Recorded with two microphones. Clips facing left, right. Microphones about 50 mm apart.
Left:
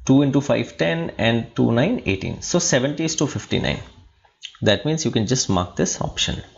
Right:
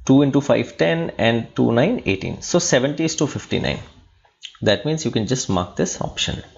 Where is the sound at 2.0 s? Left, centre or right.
Right.